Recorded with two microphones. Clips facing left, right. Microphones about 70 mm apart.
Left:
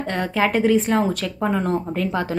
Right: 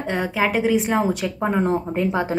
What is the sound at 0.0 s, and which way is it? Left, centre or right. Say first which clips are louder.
A woman's voice: left 1 dB; centre.